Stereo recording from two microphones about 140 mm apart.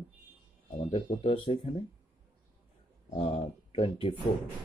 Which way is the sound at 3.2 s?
45° left (ahead or behind).